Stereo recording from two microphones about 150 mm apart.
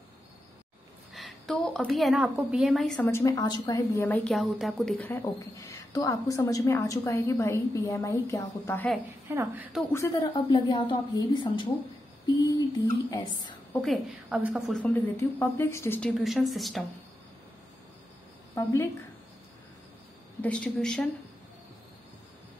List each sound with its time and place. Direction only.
1.1 s a woman's voice: centre (ahead or behind)
3.0 s a woman's voice: 20° left (ahead or behind)
4.0 s speech: 10° left (ahead or behind)
5.2 s a woman's voice: 25° left (ahead or behind)
9.3 s a woman's voice: 15° right (ahead or behind)
9.9 s a woman's voice: 20° left (ahead or behind)
10.2 s a woman's voice: 30° left (ahead or behind)
13.7 s speech: centre (ahead or behind); by 16.0 s 20° left (ahead or behind)
16.0 s speech: centre (ahead or behind)
18.5 s a woman's voice: 20° left (ahead or behind)
20.4 s speech: 10° left (ahead or behind)